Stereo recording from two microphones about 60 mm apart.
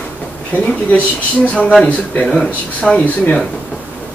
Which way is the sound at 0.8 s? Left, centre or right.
Left.